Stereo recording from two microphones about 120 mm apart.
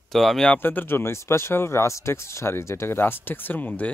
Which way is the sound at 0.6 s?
15° left (ahead or behind).